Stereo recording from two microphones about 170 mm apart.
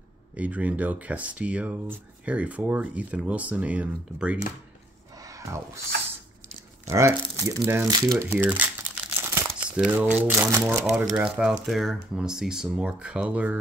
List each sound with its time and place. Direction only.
0.4 s speech: 10° right (ahead or behind)
5.2 s a sound: 20° right (ahead or behind)
6.9 s speech: 15° right (ahead or behind)
7.9 s crumpling: 20° right (ahead or behind)
9.8 s speech: 10° right (ahead or behind)